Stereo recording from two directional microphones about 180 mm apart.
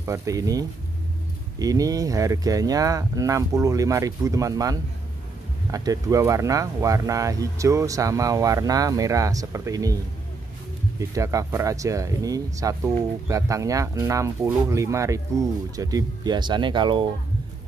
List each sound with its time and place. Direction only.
0.0 s speech: 15° right (ahead or behind)
11.0 s speech: 15° right (ahead or behind)